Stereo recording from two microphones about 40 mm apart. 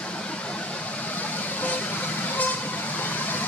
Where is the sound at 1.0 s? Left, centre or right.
Left.